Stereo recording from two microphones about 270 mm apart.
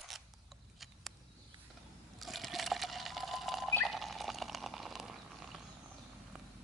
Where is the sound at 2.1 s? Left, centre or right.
Centre.